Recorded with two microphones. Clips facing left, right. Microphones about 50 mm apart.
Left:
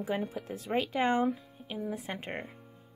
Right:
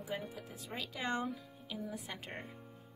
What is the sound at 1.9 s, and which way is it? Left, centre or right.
Speech, left.